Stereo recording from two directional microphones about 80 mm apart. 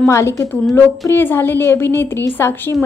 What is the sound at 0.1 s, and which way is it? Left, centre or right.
A woman's voice, left.